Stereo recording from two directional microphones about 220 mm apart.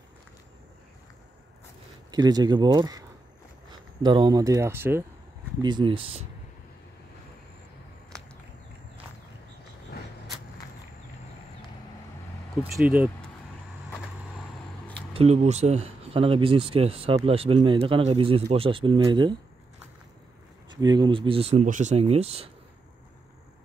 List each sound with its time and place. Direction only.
2.0 s speech: 20° right (ahead or behind)
4.0 s speech: 20° right (ahead or behind)
12.7 s speech: 10° right (ahead or behind)
15.1 s speech: 30° right (ahead or behind)
20.7 s speech: 20° right (ahead or behind)